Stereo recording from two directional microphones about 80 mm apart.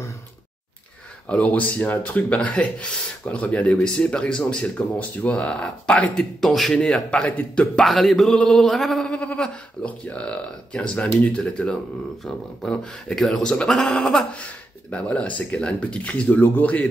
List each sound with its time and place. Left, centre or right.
1.3 s speech: centre
6.4 s speech: centre
7.8 s speech: centre
14.3 s speech: centre